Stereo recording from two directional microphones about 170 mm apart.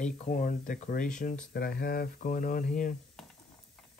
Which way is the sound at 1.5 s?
60° left (ahead or behind).